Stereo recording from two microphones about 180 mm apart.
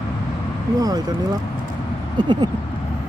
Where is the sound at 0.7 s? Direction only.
20° right (ahead or behind).